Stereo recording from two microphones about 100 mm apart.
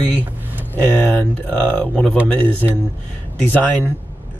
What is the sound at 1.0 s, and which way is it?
Speech, 15° left (ahead or behind).